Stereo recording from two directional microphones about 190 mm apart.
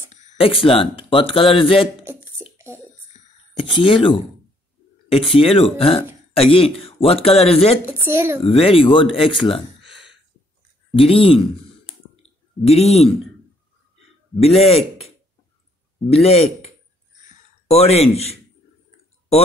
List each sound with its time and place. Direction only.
0.1 s speech: 35° left (ahead or behind)
2.5 s a sound: 15° right (ahead or behind)
3.1 s a sound: 30° left (ahead or behind)
5.1 s a man's voice: 30° left (ahead or behind)
8.0 s speech: 10° right (ahead or behind)
8.5 s speech: 30° left (ahead or behind)
11.0 s speech: 30° left (ahead or behind)
12.2 s clicking: 30° left (ahead or behind)
14.4 s a man's voice: 35° left (ahead or behind)
17.3 s a sound: 35° left (ahead or behind)
18.1 s a man's voice: 35° left (ahead or behind)